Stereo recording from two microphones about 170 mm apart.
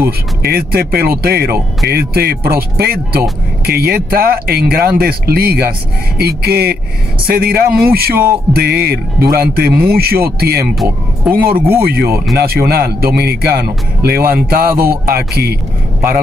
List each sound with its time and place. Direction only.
0.4 s a man's voice: 65° right (ahead or behind)